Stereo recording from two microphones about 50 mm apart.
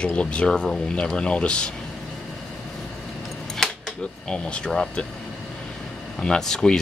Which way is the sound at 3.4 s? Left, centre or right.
Centre.